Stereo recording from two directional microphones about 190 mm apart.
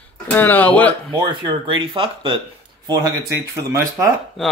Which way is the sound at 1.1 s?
25° right (ahead or behind).